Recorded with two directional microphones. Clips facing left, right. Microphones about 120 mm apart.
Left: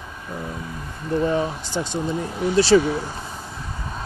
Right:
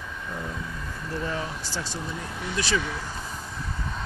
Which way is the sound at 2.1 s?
40° left (ahead or behind).